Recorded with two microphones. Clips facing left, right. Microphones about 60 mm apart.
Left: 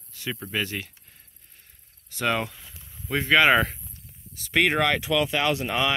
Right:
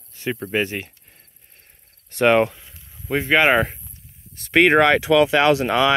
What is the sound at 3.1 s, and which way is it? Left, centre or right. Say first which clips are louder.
Speech: right 2 dB; right.